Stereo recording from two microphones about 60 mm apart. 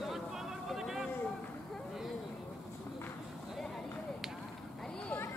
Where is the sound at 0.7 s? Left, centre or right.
Centre.